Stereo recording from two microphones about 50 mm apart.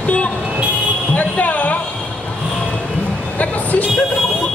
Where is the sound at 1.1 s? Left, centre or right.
Left.